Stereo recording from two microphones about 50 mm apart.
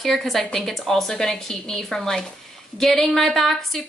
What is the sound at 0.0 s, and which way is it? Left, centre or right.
A woman's voice, centre.